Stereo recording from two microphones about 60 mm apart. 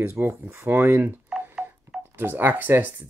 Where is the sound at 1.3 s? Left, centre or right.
Centre.